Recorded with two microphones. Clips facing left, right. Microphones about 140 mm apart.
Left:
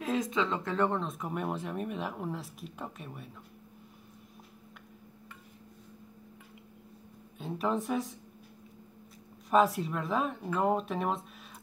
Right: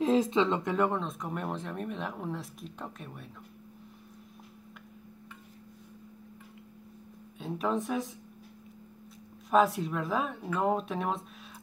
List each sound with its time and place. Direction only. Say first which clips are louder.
0.0 s speech: right 5 dB; 25° right (ahead or behind)
0.7 s speech: right 1 dB; 5° right (ahead or behind)
7.3 s speech: right 1 dB; centre (ahead or behind)
9.5 s speech: right 1 dB; centre (ahead or behind)